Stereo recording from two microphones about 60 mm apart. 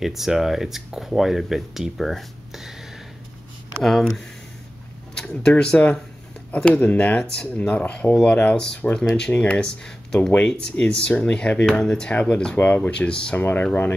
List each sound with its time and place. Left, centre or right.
0.0 s speech: centre; by 9.6 s left
9.6 s speech: centre
12.1 s speech: left
13.4 s speech: left